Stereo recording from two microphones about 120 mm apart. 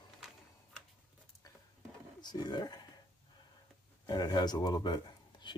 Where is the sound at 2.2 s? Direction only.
35° left (ahead or behind).